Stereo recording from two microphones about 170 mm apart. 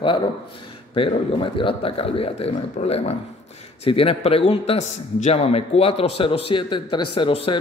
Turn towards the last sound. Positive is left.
turn(degrees=30)  # may be behind; listen again after turning